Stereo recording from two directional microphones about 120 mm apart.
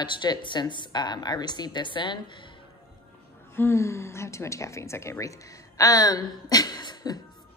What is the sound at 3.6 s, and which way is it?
A woman's voice, 25° left (ahead or behind).